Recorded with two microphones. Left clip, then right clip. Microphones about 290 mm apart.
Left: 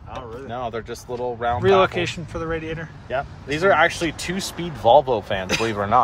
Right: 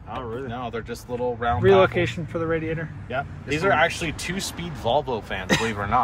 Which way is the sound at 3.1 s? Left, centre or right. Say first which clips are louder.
Left 2 dB; left.